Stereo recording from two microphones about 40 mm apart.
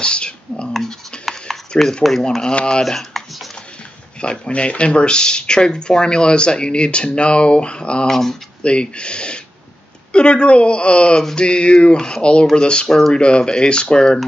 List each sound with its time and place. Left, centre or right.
0.0 s whispering: left
1.2 s a sound: centre
1.8 s speech: centre
2.4 s speech: left
2.8 s speech: centre
4.2 s speech: left
8.1 s speech: centre
8.6 s speech: left